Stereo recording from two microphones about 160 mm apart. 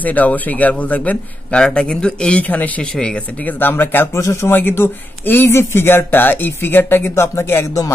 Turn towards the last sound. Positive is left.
turn(degrees=15)  # may be behind; listen again after turning